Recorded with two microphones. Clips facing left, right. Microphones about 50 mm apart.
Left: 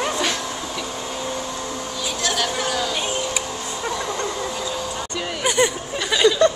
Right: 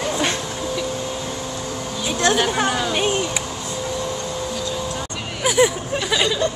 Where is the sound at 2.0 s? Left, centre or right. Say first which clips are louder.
Right 6 dB; right.